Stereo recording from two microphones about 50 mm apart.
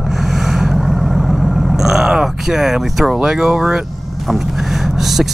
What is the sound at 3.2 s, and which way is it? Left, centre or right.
Speech, centre.